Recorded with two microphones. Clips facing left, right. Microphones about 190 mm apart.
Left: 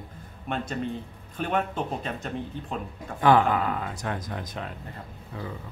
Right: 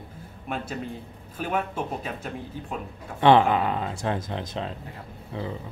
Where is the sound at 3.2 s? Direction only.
25° right (ahead or behind).